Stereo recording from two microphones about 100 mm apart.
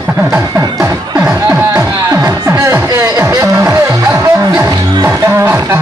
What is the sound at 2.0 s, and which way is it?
Music, 30° right (ahead or behind).